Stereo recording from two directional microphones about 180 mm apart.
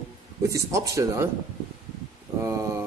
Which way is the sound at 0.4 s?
15° right (ahead or behind).